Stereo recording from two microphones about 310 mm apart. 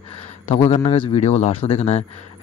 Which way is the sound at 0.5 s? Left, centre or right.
Centre.